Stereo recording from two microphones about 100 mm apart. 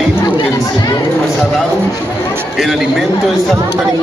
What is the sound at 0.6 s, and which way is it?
Chatter, 40° left (ahead or behind).